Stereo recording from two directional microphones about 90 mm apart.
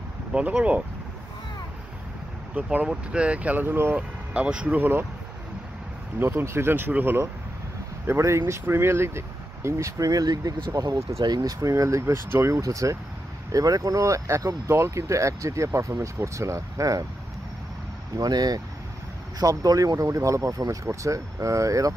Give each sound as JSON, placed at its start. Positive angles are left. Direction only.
{"t": 0.3, "sound": "speech", "side_deg": -15}
{"t": 2.5, "sound": "speech", "side_deg": -15}
{"t": 3.9, "sound": "speech", "side_deg": -10}
{"t": 6.1, "sound": "speech", "side_deg": -25}
{"t": 18.1, "sound": "speech", "side_deg": -45}